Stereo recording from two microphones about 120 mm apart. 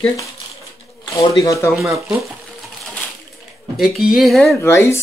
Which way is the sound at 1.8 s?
25° right (ahead or behind).